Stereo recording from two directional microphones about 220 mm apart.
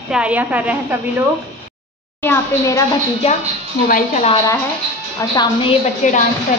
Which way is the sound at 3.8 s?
35° left (ahead or behind).